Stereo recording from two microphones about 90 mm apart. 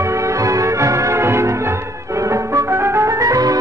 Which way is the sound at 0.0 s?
35° right (ahead or behind).